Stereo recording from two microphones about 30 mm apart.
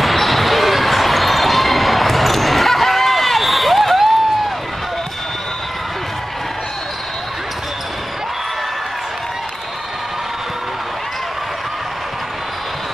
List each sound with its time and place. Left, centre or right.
0.0 s basketball bounce: centre